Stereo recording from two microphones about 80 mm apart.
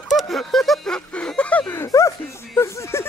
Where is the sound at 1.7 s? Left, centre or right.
Left.